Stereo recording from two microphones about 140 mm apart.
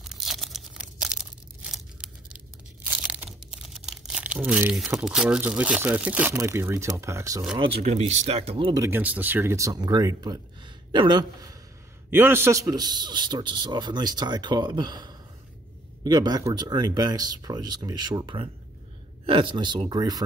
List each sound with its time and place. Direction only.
0.0 s tearing: centre (ahead or behind)
2.8 s crunch: 10° right (ahead or behind)
3.6 s crumpling: 5° right (ahead or behind)
4.7 s speech: 5° right (ahead or behind); by 7.4 s 20° right (ahead or behind)
7.5 s a man's voice: 40° right (ahead or behind)
7.8 s speech: 50° right (ahead or behind)
8.9 s speech: 10° right (ahead or behind); by 11.5 s 35° right (ahead or behind)
12.1 s a man's voice: 15° right (ahead or behind)